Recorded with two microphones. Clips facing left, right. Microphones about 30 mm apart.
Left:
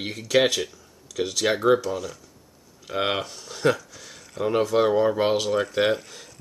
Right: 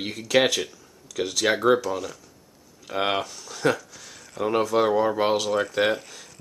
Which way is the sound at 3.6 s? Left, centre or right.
Centre.